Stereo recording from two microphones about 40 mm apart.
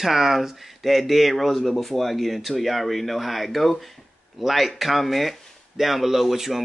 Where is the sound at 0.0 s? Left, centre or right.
Centre.